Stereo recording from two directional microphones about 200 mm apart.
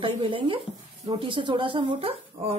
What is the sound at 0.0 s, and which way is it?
Speech, 25° right (ahead or behind).